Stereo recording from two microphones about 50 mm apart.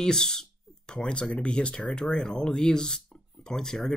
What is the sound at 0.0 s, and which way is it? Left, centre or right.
Speech, centre.